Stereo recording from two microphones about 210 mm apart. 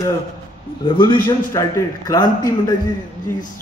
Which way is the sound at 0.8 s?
25° left (ahead or behind).